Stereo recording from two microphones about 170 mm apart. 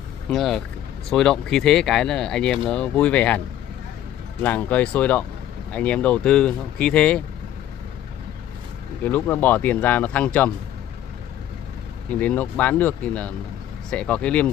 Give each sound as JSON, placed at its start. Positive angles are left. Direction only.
{"t": 0.3, "sound": "speech", "side_deg": 0}
{"t": 9.0, "sound": "speech", "side_deg": 10}
{"t": 12.2, "sound": "speech", "side_deg": 10}